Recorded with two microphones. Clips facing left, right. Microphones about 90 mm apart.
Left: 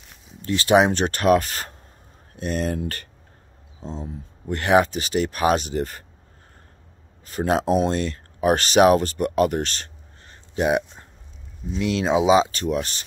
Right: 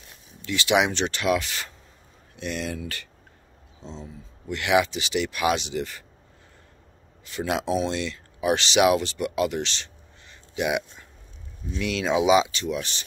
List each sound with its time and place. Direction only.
0.4 s speech: 40° left (ahead or behind)
7.2 s speech: 40° left (ahead or behind)